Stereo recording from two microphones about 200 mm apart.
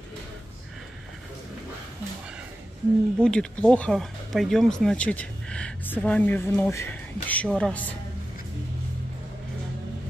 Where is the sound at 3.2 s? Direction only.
5° left (ahead or behind).